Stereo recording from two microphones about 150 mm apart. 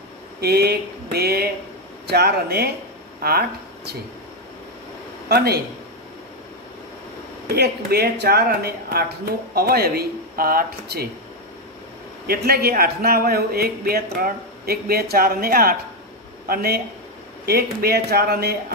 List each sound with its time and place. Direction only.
0.4 s speech: 90° right
5.3 s speech: 90° right
7.4 s speech: 90° right
12.3 s speech: 90° right
16.4 s speech: 90° right